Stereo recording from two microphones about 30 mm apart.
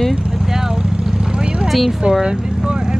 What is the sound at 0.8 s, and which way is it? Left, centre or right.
Vehicle, right.